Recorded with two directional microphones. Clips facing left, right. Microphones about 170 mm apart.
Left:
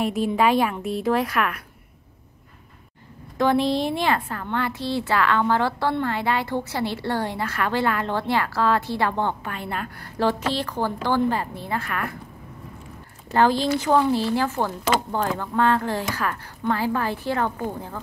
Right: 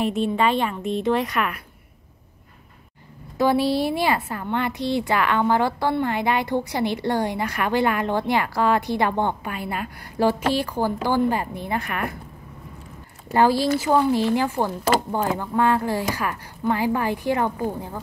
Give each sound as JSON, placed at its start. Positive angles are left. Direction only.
{"t": 0.0, "sound": "a woman's voice", "side_deg": 5}
{"t": 3.3, "sound": "a woman's voice", "side_deg": -10}
{"t": 13.3, "sound": "a woman's voice", "side_deg": -10}